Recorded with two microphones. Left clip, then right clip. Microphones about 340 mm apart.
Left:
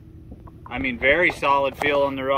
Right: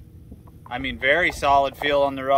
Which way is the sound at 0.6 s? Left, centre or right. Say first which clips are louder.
Left 1 dB; centre.